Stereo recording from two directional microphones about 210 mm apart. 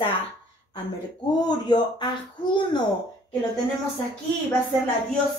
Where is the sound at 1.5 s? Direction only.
20° left (ahead or behind).